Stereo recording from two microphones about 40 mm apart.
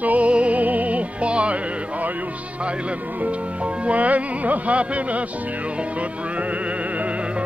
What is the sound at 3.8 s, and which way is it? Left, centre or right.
Speech, right.